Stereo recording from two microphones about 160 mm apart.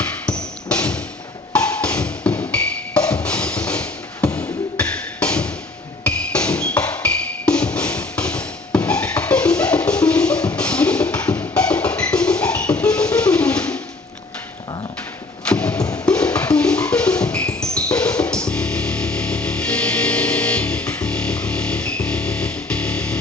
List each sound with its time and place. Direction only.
0.7 s music: 10° left (ahead or behind)
15.4 s music: 5° left (ahead or behind)
15.7 s music: 20° left (ahead or behind)
16.1 s music: 5° left (ahead or behind)